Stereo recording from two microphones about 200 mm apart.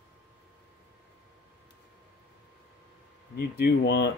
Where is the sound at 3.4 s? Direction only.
55° left (ahead or behind).